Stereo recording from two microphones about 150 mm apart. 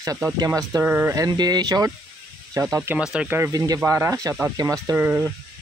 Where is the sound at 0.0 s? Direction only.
20° right (ahead or behind).